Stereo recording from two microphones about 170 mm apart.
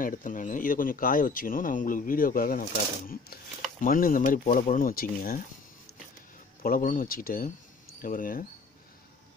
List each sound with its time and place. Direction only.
0.0 s speech: 50° left (ahead or behind)
3.8 s speech: 55° left (ahead or behind)
6.6 s speech: 55° left (ahead or behind)